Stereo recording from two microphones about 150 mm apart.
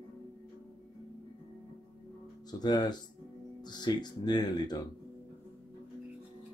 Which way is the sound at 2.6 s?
25° left (ahead or behind).